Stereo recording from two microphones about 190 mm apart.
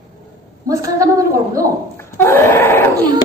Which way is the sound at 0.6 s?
15° right (ahead or behind).